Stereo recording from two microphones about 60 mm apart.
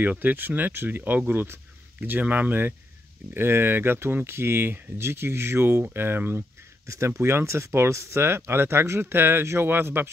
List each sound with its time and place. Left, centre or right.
0.0 s speech: right